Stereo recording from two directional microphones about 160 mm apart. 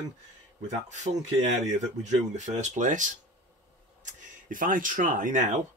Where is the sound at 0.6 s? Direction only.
50° right (ahead or behind).